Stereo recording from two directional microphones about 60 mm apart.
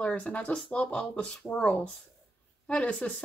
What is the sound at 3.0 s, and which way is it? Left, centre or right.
Speech, centre.